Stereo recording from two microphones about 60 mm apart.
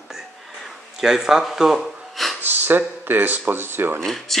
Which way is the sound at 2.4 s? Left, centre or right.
Right.